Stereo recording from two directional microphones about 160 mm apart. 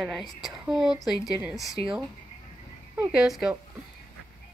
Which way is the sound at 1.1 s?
20° left (ahead or behind).